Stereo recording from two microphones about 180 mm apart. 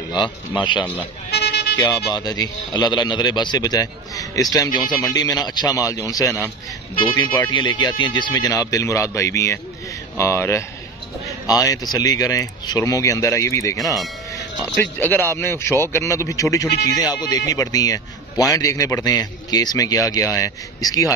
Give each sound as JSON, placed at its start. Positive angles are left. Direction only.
{"t": 0.1, "sound": "speech", "side_deg": 25}
{"t": 1.3, "sound": "music", "side_deg": 65}
{"t": 1.8, "sound": "speech", "side_deg": 25}
{"t": 7.5, "sound": "speech", "side_deg": 25}
{"t": 15.0, "sound": "speech", "side_deg": 10}